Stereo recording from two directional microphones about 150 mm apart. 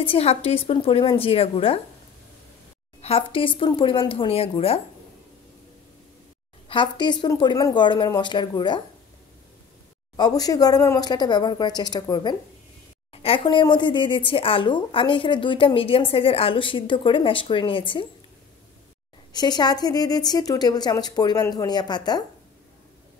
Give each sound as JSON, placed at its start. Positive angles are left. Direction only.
{"t": 0.0, "sound": "speech", "side_deg": 40}
{"t": 3.0, "sound": "speech", "side_deg": 40}
{"t": 6.7, "sound": "speech", "side_deg": 30}
{"t": 10.1, "sound": "a woman's voice", "side_deg": 25}
{"t": 13.1, "sound": "speech", "side_deg": 40}
{"t": 19.3, "sound": "a woman's voice", "side_deg": 30}